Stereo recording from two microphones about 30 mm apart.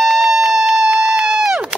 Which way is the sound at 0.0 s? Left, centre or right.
Centre.